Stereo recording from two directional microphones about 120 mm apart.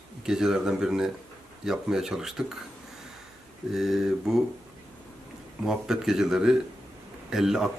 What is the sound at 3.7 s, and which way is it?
Speech, 5° right (ahead or behind).